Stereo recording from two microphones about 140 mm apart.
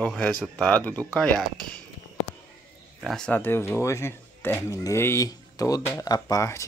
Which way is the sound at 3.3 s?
15° left (ahead or behind).